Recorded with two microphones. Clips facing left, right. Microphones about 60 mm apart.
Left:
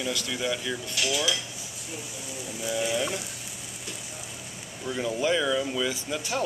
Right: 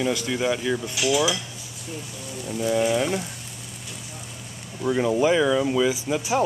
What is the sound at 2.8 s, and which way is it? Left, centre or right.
Speech, centre.